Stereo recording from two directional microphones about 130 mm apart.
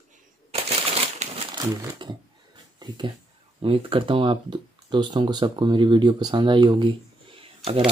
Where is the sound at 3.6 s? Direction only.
45° right (ahead or behind).